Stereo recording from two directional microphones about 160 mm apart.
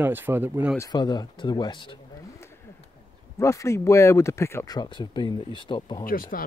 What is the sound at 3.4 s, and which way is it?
Speech, 20° left (ahead or behind).